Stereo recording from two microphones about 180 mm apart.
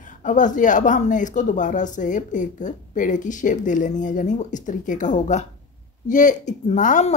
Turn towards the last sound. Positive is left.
turn(degrees=40)  # may be behind; listen again after turning